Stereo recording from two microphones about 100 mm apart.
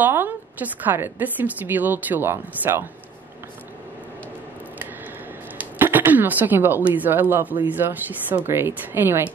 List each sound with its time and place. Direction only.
0.0 s a woman's voice: 20° right (ahead or behind)
5.6 s a woman's voice: 20° right (ahead or behind)